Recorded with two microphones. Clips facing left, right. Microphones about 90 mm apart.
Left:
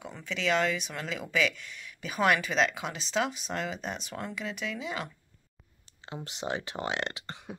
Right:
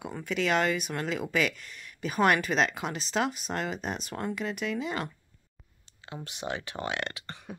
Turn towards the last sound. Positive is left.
turn(degrees=20)  # may be behind; listen again after turning